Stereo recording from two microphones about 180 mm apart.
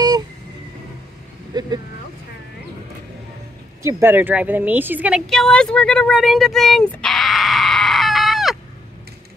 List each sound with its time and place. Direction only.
1.5 s vehicle: 25° right (ahead or behind)
3.8 s a woman's voice: 10° right (ahead or behind)